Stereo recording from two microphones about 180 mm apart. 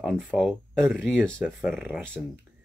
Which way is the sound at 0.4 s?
5° left (ahead or behind).